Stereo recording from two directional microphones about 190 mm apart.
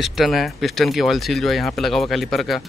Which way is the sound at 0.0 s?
Centre (ahead or behind).